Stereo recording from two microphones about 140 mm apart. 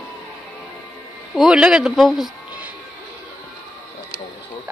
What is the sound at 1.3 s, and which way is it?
Speech, 5° right (ahead or behind).